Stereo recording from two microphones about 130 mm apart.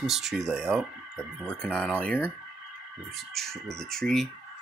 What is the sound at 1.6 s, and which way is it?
Speech, 10° left (ahead or behind).